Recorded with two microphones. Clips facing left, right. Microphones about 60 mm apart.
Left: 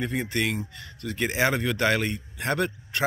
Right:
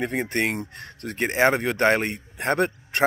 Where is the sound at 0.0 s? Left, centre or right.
Right.